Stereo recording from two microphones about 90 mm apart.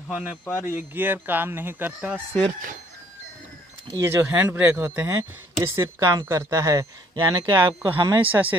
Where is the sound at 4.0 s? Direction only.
30° right (ahead or behind).